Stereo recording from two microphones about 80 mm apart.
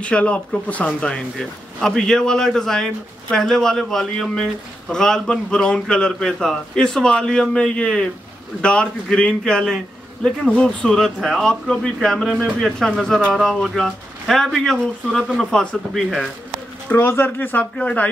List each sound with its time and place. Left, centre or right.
0.0 s speech: centre
16.9 s speech: left